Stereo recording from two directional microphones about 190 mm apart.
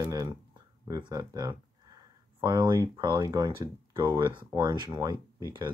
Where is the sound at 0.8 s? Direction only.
20° right (ahead or behind).